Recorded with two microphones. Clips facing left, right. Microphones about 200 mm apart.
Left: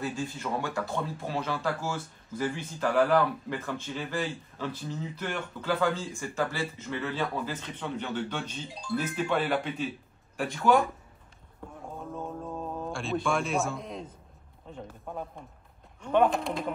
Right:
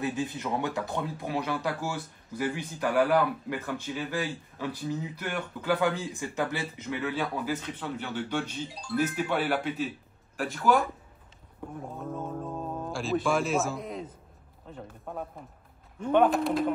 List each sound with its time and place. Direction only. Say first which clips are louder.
0.0 s speech: right 2 dB; 20° right (ahead or behind); by 10.8 s centre (ahead or behind)
12.9 s speech: right 3 dB; centre (ahead or behind)